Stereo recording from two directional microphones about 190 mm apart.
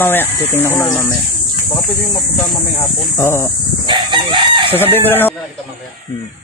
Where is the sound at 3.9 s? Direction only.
25° right (ahead or behind).